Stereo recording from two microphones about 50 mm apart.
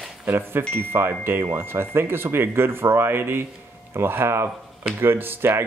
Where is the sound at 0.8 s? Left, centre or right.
Right.